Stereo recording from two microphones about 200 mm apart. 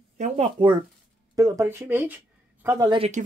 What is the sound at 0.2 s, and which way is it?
Speech, 30° right (ahead or behind).